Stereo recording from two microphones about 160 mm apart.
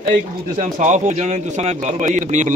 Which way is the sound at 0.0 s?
55° right (ahead or behind).